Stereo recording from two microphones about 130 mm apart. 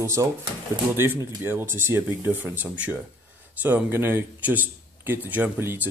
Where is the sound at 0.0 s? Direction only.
20° right (ahead or behind).